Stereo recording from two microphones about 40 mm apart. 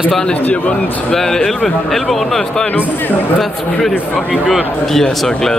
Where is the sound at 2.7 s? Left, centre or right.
Left.